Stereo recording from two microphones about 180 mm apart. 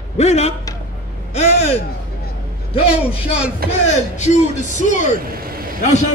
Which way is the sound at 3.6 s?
55° right (ahead or behind).